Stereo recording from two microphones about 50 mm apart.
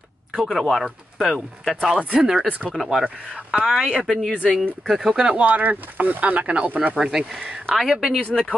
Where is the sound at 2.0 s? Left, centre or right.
Right.